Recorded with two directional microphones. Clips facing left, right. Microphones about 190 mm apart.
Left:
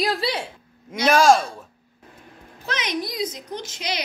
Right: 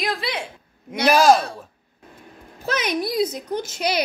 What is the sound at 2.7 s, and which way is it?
A woman's voice, 50° right (ahead or behind).